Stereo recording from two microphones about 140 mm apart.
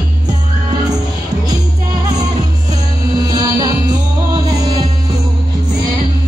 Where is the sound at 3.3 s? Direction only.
25° right (ahead or behind).